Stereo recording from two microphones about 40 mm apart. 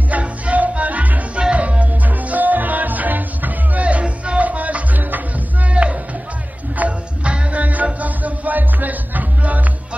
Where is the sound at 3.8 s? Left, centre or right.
Right.